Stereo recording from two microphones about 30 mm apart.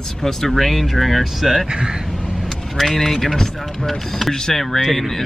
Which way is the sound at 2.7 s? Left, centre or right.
Centre.